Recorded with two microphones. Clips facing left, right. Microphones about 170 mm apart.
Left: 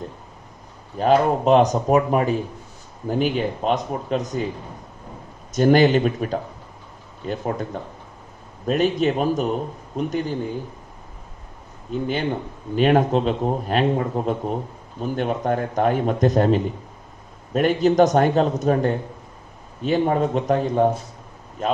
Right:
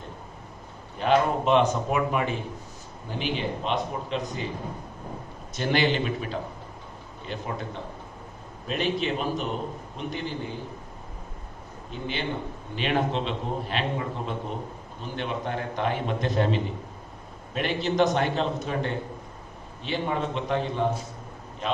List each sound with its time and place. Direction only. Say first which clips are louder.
0.9 s a man's voice: left 5 dB; 40° left (ahead or behind)
5.5 s a man's voice: left 9 dB; 45° left (ahead or behind)
11.9 s a man's voice: left 8 dB; 45° left (ahead or behind)